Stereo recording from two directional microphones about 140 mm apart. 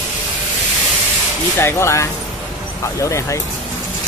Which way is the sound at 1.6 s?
20° left (ahead or behind).